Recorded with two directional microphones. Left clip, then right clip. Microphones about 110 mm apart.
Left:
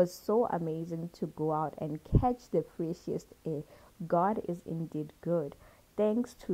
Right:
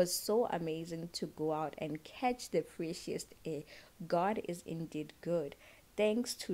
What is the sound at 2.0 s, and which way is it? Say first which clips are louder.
Speech: left 6 dB; 15° left (ahead or behind).